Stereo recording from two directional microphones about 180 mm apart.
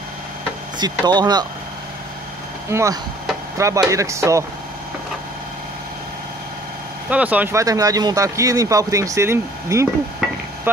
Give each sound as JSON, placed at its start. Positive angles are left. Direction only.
{"t": 0.7, "sound": "speech", "side_deg": -25}
{"t": 2.7, "sound": "speech", "side_deg": -15}
{"t": 7.1, "sound": "speech", "side_deg": -10}